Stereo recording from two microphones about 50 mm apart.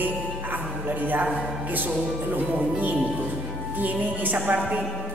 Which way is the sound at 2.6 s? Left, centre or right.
Right.